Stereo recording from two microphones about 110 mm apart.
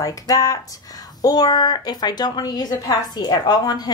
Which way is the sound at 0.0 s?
35° left (ahead or behind).